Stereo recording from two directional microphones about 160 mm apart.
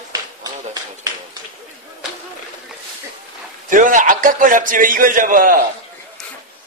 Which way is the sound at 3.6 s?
55° right (ahead or behind).